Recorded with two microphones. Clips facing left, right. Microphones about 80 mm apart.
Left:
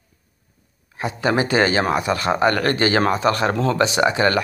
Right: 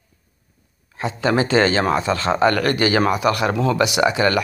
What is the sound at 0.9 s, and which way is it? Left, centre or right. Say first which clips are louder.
A man's voice: right 1 dB; left.